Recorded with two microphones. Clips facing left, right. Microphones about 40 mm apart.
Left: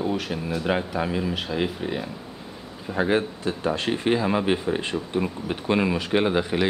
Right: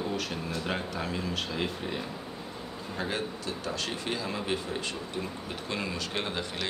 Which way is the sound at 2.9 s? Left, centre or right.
Left.